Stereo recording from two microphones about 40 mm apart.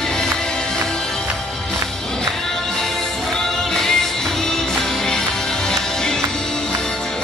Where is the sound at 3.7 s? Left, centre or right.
Centre.